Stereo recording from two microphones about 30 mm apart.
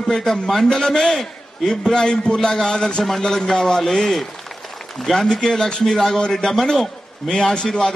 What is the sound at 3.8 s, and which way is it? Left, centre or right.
A man's voice, centre.